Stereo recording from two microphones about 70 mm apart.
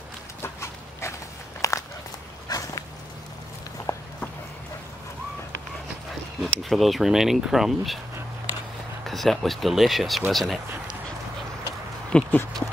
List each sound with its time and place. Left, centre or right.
0.4 s dog: left
1.6 s walk: left
3.9 s a sound: left
6.4 s speech: centre
9.0 s speech: centre
12.1 s speech: centre